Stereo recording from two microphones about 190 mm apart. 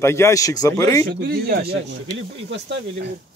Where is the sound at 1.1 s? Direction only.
55° right (ahead or behind).